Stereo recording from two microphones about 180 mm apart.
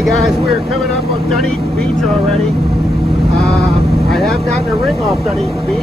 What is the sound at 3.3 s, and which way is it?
Sheep, centre (ahead or behind).